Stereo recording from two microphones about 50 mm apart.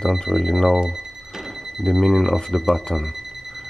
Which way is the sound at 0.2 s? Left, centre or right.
Centre.